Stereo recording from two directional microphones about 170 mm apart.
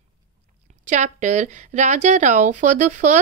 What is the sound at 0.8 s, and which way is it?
Speech, 45° right (ahead or behind).